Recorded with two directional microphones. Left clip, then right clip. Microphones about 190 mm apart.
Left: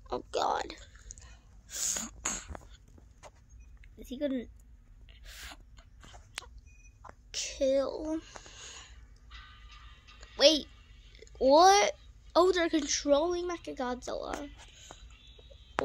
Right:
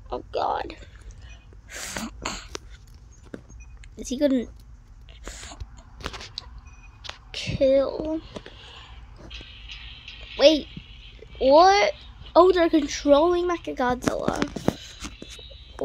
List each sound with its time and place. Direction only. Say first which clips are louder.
0.1 s speech: right 5 dB; 15° left (ahead or behind)
1.7 s sneeze: right 3 dB; centre (ahead or behind)
3.9 s speech: right 12 dB; 15° right (ahead or behind)
7.2 s a sound: right 9 dB; 5° left (ahead or behind)
10.3 s speech: right 7 dB; centre (ahead or behind)
11.3 s a child's voice: right 6 dB; 20° left (ahead or behind)
12.3 s a woman's voice: right 9 dB; centre (ahead or behind)